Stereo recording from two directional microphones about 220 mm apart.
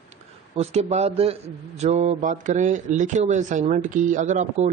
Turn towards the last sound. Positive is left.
turn(degrees=-35)  # may be behind; listen again after turning